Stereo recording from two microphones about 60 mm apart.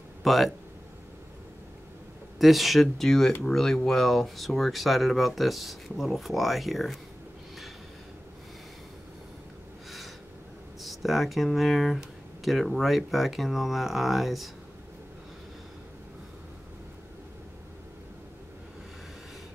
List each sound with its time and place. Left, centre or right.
0.2 s speech: centre
2.3 s speech: centre
9.8 s a sound: centre
10.8 s speech: centre